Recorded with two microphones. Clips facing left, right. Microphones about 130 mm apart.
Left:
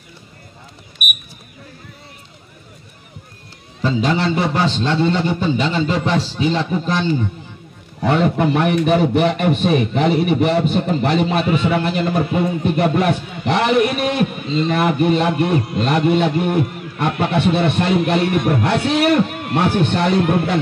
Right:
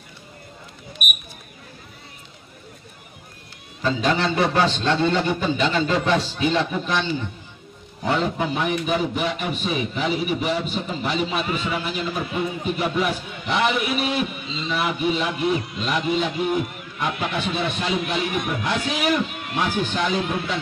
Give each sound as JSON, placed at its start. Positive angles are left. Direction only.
{"t": 3.8, "sound": "a man's voice", "side_deg": 25}
{"t": 8.0, "sound": "a man's voice", "side_deg": 65}